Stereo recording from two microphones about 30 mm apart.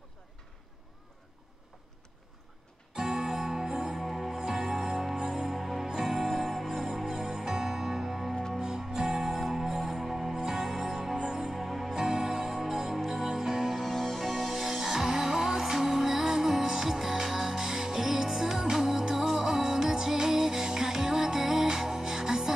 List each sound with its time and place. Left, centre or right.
2.9 s music: right
4.0 s music: centre
6.1 s music: centre
9.8 s music: centre
11.9 s music: right
13.8 s music: centre